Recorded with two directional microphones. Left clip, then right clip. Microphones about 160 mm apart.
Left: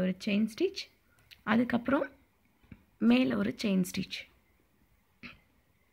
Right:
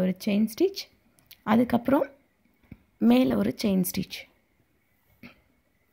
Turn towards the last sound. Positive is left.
turn(degrees=-35)  # may be behind; listen again after turning